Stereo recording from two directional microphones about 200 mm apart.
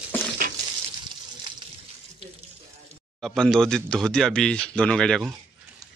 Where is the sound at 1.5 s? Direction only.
25° right (ahead or behind).